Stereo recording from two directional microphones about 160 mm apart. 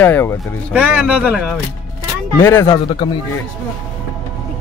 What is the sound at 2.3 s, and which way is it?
Speech, 15° left (ahead or behind).